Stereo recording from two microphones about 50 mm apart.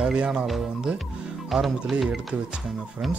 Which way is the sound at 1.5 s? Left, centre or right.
Centre.